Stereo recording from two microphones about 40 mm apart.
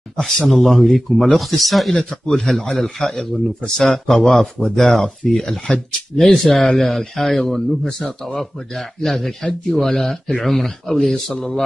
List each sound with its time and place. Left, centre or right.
0.5 s a man's voice: centre
2.0 s a man's voice: centre